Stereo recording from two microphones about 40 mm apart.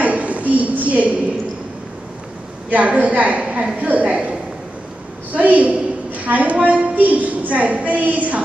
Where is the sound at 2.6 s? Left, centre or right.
Right.